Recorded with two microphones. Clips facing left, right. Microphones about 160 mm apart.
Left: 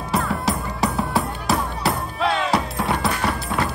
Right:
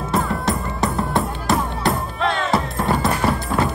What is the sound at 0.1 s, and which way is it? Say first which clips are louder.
Drum: right 1 dB; centre (ahead or behind).